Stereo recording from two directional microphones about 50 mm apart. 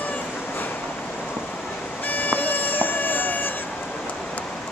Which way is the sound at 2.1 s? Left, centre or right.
Left.